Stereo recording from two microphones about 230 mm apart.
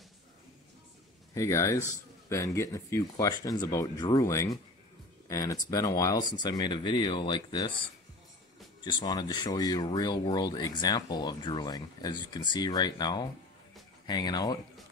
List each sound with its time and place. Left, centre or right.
1.3 s speech: centre
8.8 s speech: centre